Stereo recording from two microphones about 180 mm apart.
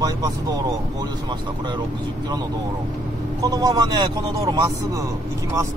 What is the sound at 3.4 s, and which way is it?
Speech, 20° right (ahead or behind).